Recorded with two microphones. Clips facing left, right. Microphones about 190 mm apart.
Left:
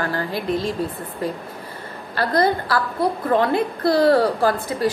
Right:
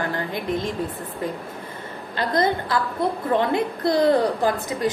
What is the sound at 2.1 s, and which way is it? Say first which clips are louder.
A woman's voice: left 2 dB; 20° right (ahead or behind).